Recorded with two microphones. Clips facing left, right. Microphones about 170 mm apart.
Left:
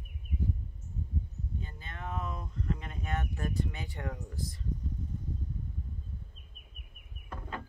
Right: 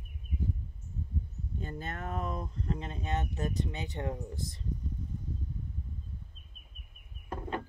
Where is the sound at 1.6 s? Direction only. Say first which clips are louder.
Right 10 dB; 45° right (ahead or behind); by 4.6 s 25° right (ahead or behind).